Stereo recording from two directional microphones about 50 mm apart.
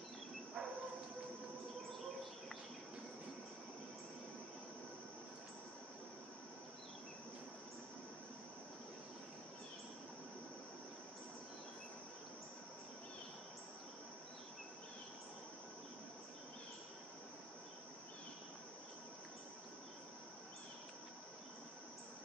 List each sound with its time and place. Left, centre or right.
0.6 s dog: centre